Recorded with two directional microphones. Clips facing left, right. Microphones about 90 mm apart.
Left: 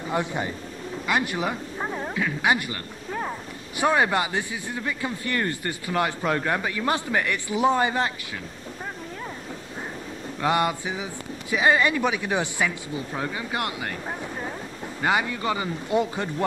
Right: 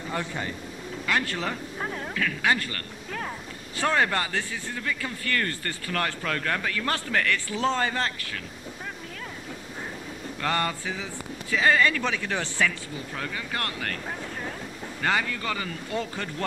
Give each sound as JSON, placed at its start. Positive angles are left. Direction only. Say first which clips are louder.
{"t": 0.1, "sound": "speech", "louder": "left 5 dB", "side_deg": 20}
{"t": 10.4, "sound": "speech", "louder": "left 4 dB", "side_deg": 15}
{"t": 15.0, "sound": "speech", "louder": "left 3 dB", "side_deg": 15}